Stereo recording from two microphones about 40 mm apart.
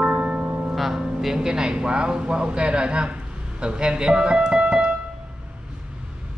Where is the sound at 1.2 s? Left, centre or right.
Centre.